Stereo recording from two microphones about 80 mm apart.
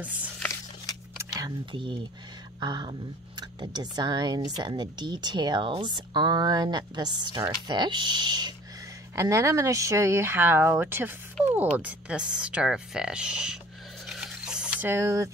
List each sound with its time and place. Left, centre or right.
0.0 s speech: centre
1.7 s speech: right
2.6 s speech: right
9.1 s speech: right
11.5 s speech: centre
14.0 s a sound: centre
14.9 s speech: right